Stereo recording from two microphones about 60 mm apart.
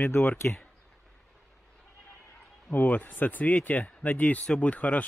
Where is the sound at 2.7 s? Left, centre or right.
Left.